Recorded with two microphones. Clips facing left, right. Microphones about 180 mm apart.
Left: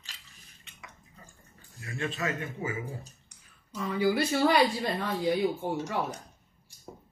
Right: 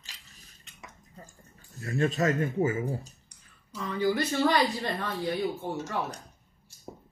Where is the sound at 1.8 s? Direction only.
40° right (ahead or behind).